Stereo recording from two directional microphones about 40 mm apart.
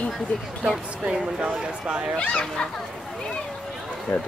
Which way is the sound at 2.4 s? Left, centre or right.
Centre.